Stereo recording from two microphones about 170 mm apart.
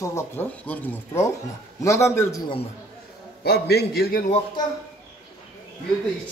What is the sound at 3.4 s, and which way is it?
Speech, 70° left (ahead or behind).